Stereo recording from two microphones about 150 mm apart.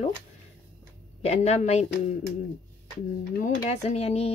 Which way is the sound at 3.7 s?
45° left (ahead or behind).